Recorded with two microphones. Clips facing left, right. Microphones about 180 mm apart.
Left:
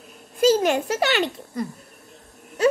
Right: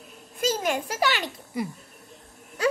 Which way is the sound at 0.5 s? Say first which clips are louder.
Left 7 dB; 30° left (ahead or behind).